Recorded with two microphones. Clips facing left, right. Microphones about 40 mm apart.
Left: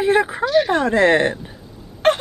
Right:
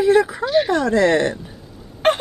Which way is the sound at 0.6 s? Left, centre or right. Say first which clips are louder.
Left 1 dB; left.